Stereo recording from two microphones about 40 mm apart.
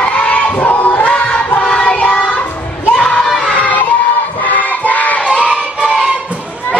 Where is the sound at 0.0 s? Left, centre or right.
Left.